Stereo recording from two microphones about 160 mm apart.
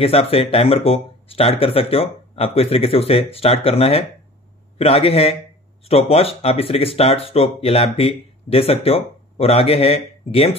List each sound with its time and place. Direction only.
0.0 s speech: 40° left (ahead or behind)